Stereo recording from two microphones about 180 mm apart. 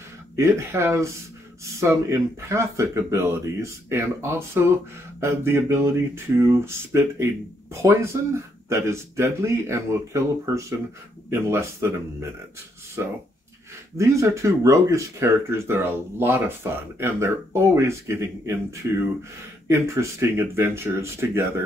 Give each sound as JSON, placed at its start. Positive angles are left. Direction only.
{"t": 0.4, "sound": "speech", "side_deg": -15}